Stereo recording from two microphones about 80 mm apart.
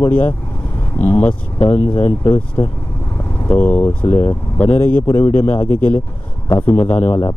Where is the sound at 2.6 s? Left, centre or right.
Left.